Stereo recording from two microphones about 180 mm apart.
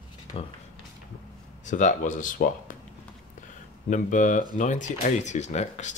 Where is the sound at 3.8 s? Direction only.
45° left (ahead or behind).